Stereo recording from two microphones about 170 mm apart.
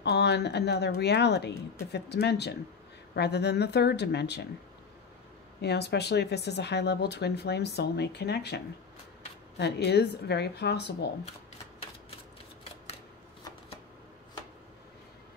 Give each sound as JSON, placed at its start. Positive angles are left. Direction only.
{"t": 0.0, "sound": "speech", "side_deg": 80}
{"t": 5.6, "sound": "speech", "side_deg": 75}